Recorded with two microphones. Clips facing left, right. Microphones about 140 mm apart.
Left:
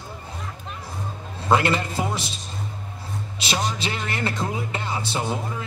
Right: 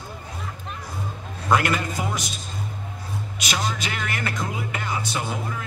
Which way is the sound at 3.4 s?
30° left (ahead or behind).